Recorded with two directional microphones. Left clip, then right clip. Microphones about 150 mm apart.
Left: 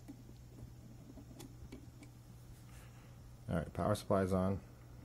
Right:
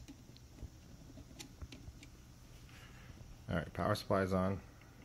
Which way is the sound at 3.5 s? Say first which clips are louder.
Even; 10° left (ahead or behind).